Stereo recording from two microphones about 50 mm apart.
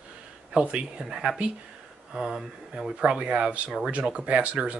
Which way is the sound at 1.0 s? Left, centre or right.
Centre.